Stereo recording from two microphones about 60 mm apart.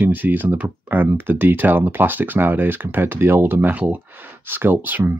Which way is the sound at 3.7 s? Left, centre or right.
Right.